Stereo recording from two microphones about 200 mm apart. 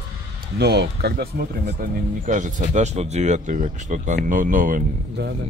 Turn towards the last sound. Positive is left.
turn(degrees=-45)  # may be behind; listen again after turning